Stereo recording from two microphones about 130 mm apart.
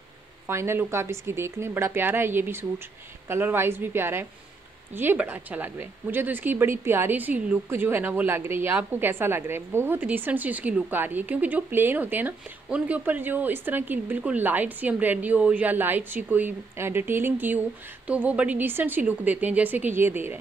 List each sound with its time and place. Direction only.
0.5 s a woman's voice: 20° right (ahead or behind)